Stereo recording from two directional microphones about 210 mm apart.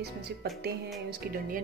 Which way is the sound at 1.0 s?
45° right (ahead or behind).